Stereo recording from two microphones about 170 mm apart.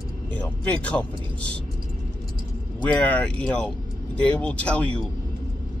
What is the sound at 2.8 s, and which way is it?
Speech, 10° left (ahead or behind).